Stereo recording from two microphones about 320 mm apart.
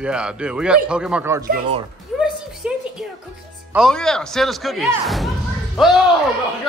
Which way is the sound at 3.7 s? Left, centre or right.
Centre.